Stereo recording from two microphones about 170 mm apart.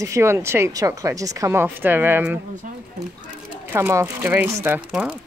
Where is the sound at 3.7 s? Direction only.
15° right (ahead or behind).